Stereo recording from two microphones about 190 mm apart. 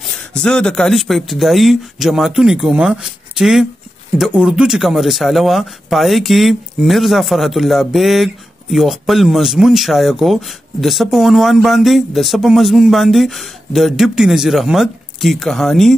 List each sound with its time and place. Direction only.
0.1 s speech: 5° left (ahead or behind)